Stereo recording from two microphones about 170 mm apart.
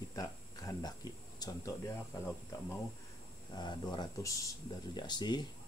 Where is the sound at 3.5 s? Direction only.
25° left (ahead or behind).